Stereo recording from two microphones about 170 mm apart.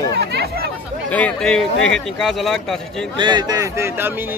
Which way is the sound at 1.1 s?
5° left (ahead or behind).